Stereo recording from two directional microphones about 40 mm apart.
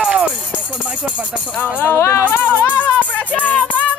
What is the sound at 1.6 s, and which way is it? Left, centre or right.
Music, left.